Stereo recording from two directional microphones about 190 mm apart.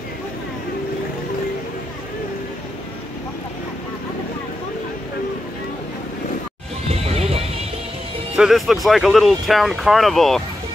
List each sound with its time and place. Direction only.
6.9 s music: 30° right (ahead or behind)
8.4 s speech: centre (ahead or behind)